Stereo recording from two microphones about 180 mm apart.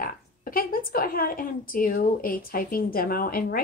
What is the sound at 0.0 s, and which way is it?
A woman's voice, 55° left (ahead or behind).